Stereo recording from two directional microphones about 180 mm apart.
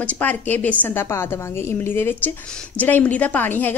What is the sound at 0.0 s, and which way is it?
A woman's voice, 10° left (ahead or behind).